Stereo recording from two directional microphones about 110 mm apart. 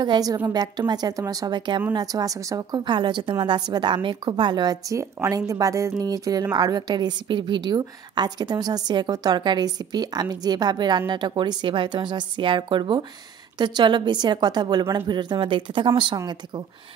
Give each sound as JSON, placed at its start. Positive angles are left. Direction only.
{"t": 0.0, "sound": "a woman's voice", "side_deg": -40}
{"t": 2.8, "sound": "a woman's voice", "side_deg": -45}